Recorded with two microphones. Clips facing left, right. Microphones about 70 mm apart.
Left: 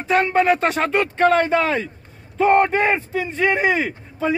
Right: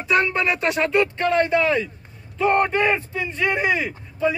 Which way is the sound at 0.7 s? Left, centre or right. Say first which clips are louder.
Even; left.